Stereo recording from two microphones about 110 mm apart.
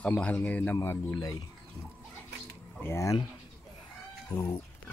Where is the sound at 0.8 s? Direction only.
30° left (ahead or behind).